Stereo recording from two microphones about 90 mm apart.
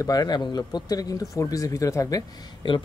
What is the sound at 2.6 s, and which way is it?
Speech, 60° left (ahead or behind).